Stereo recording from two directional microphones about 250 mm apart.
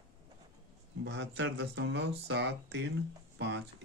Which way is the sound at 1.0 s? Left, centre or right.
Right.